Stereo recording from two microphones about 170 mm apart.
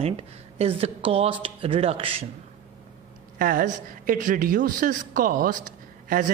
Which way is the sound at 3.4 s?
55° right (ahead or behind).